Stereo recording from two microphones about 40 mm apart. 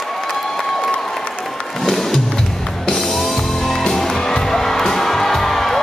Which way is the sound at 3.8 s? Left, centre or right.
Centre.